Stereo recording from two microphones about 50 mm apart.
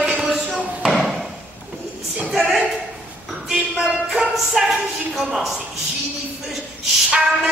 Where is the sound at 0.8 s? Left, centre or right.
Centre.